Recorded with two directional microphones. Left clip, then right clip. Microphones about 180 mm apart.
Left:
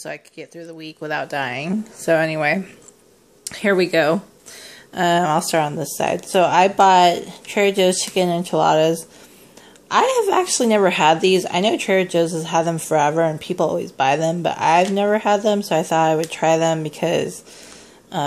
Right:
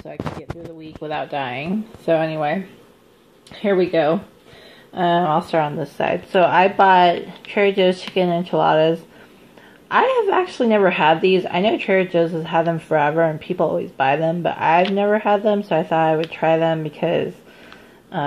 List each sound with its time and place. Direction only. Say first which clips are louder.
1.3 s a woman's voice: left 1 dB; 15° left (ahead or behind)
3.4 s a woman's voice: left 1 dB; 15° left (ahead or behind)